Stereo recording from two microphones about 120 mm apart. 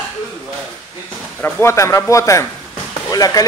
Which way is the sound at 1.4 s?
25° left (ahead or behind).